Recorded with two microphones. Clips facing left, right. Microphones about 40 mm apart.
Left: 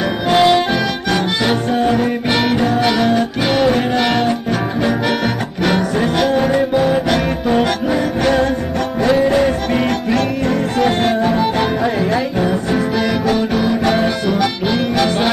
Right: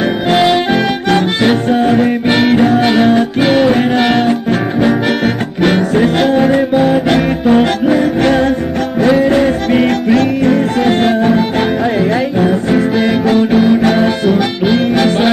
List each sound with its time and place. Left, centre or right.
0.3 s music: centre
0.7 s accordion: right
1.8 s music: centre